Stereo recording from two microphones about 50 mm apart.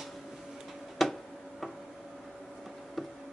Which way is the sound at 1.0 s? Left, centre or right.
Centre.